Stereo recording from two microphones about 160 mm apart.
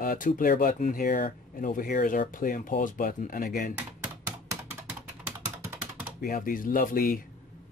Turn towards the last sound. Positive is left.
turn(degrees=60)  # may be behind; listen again after turning